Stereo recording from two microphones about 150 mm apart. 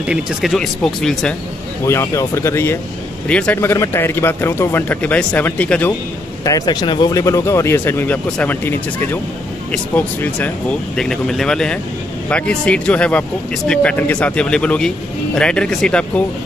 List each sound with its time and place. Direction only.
0.0 s speech: 5° right (ahead or behind)
1.9 s speech: 20° left (ahead or behind)
6.4 s speech: 25° left (ahead or behind); by 16.1 s 5° left (ahead or behind)